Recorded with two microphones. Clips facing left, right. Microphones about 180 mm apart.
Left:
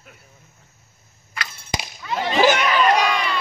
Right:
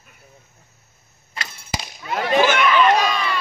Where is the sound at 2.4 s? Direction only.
40° left (ahead or behind).